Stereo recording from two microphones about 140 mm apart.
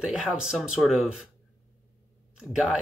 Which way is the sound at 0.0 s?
5° right (ahead or behind).